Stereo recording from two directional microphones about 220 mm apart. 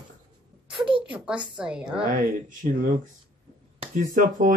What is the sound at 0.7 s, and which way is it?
Speech, 20° right (ahead or behind).